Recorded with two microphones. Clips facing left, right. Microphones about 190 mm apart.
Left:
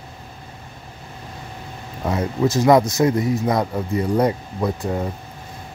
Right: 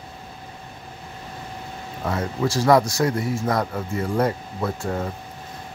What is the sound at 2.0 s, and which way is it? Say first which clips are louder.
A man's voice: left 4 dB; 20° left (ahead or behind).